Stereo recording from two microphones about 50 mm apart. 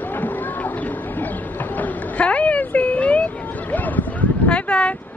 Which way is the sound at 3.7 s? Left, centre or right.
Left.